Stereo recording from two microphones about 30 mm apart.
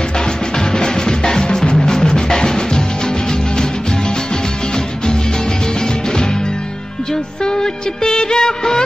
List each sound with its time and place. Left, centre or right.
0.7 s music: left
7.4 s music of bollywood: left